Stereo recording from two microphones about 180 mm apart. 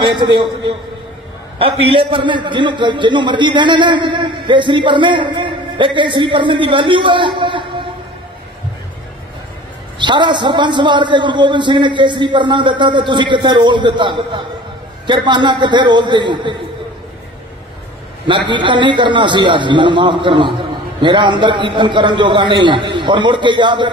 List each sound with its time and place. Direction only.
0.0 s a man's voice: 25° right (ahead or behind)
9.9 s a man's voice: 25° right (ahead or behind)
18.2 s a man's voice: 25° right (ahead or behind)